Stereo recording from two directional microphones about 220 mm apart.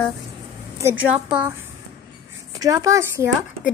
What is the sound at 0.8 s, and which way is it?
Speech, 10° right (ahead or behind).